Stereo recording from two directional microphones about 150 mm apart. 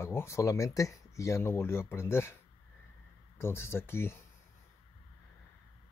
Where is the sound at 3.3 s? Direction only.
15° left (ahead or behind).